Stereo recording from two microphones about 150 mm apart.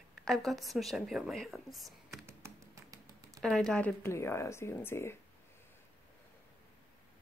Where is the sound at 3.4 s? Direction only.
5° left (ahead or behind).